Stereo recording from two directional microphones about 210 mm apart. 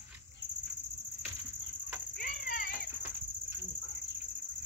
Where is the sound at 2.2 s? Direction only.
40° left (ahead or behind).